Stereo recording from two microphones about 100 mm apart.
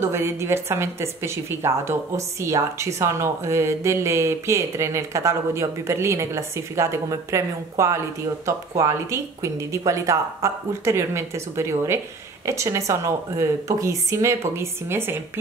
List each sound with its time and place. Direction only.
0.0 s a woman's voice: 25° right (ahead or behind)